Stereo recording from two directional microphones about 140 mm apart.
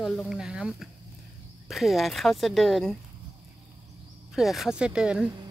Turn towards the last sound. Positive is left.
turn(degrees=-5)  # may be behind; listen again after turning